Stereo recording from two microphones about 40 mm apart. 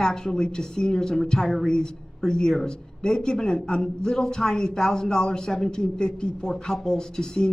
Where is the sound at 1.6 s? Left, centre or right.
Centre.